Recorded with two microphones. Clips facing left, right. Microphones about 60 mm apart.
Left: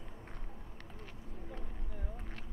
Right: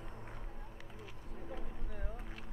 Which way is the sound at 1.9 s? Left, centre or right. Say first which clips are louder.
Right 1 dB; right.